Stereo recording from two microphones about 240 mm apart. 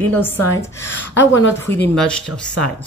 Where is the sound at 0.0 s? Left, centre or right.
Centre.